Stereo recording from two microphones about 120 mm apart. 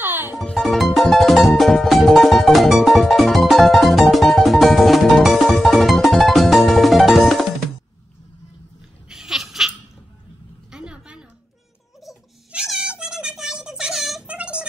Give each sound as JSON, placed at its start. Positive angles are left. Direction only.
{"t": 0.0, "sound": "music", "side_deg": -20}
{"t": 0.4, "sound": "music", "side_deg": 0}
{"t": 9.1, "sound": "laughter", "side_deg": -5}
{"t": 10.7, "sound": "a sound", "side_deg": -10}